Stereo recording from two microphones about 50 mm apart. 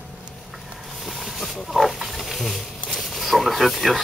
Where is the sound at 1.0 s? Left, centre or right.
Centre.